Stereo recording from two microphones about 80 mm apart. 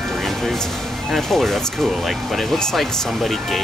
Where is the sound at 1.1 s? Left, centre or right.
Centre.